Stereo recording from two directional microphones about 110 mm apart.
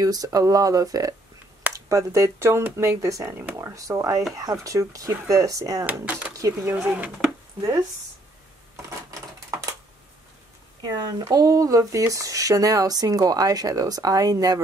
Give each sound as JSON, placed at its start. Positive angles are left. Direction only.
{"t": 0.0, "sound": "speech", "side_deg": -35}
{"t": 5.9, "sound": "speech", "side_deg": -15}
{"t": 10.8, "sound": "speech", "side_deg": -35}